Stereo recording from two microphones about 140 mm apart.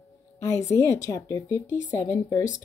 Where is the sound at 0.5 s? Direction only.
20° left (ahead or behind).